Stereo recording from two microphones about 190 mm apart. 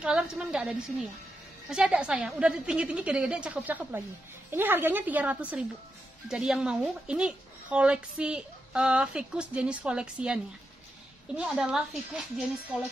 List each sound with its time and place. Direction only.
0.0 s a woman's voice: 5° right (ahead or behind)